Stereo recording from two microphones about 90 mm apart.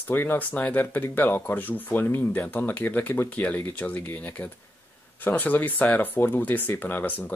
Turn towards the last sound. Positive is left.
turn(degrees=20)  # may be behind; listen again after turning